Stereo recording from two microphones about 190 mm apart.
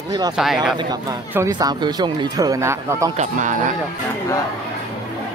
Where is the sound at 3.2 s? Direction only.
40° right (ahead or behind).